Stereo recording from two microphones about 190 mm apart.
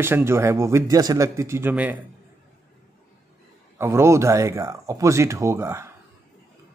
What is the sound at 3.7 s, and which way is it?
Speech, 15° right (ahead or behind).